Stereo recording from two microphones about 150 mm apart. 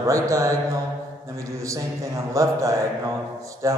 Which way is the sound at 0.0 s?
20° right (ahead or behind).